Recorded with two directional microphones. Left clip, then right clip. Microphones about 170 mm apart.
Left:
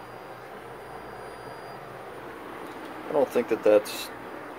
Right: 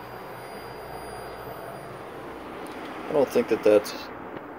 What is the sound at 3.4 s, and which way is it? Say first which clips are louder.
Speech: even; 25° right (ahead or behind).